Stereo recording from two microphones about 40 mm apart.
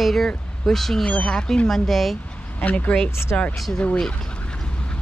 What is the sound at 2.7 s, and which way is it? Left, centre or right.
Speech, left.